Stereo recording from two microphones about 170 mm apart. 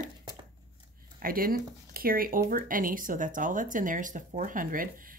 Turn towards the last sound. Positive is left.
turn(degrees=-55)  # may be behind; listen again after turning